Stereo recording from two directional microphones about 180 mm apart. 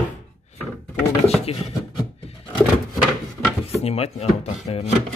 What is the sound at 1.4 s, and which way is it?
Speech, 35° left (ahead or behind).